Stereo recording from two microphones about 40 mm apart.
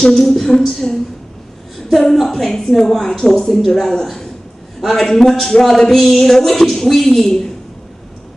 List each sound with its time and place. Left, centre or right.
0.0 s a woman's voice: centre